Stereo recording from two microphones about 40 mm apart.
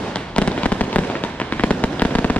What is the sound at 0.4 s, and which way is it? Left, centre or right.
Fireworks, left.